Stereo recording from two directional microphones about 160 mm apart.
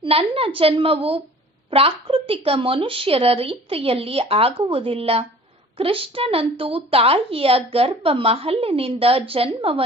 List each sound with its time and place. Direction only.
0.0 s a woman's voice: 40° right (ahead or behind)